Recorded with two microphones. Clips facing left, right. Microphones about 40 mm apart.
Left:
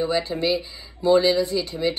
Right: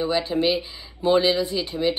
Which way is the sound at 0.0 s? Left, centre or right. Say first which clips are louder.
Right 1 dB; right.